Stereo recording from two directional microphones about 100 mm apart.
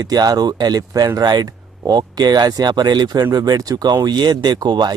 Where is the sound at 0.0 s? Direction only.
40° right (ahead or behind).